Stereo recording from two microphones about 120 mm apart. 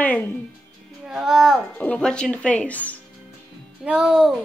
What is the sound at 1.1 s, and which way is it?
Speech, 5° right (ahead or behind).